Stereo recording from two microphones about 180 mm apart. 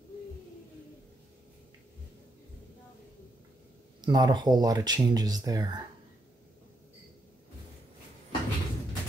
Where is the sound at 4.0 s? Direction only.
20° right (ahead or behind).